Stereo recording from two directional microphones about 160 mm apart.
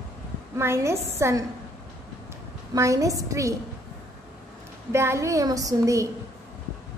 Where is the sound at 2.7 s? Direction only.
20° right (ahead or behind).